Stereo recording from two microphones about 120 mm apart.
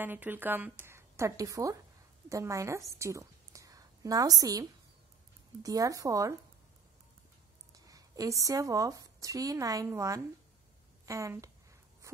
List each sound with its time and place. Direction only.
0.0 s speech: 15° right (ahead or behind)
3.0 s a sound: 25° right (ahead or behind)
5.6 s speech: 30° right (ahead or behind)
7.7 s speech: 30° right (ahead or behind)